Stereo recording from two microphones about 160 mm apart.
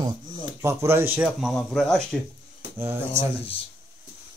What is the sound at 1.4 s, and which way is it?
Speech, centre (ahead or behind).